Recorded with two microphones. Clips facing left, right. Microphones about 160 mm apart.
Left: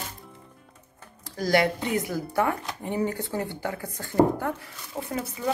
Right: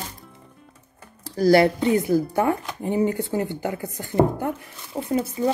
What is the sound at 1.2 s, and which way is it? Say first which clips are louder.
Speech: right 7 dB; 35° right (ahead or behind).